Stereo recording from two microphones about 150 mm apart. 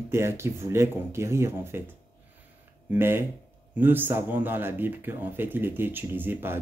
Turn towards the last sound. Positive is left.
turn(degrees=-15)  # may be behind; listen again after turning